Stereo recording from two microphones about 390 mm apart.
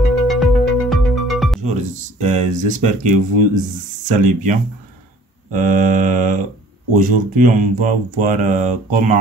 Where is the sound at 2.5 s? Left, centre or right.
Centre.